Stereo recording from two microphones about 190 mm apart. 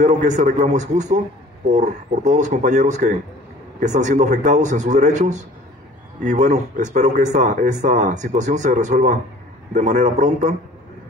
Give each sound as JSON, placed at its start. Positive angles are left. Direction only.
{"t": 0.0, "sound": "speech", "side_deg": -40}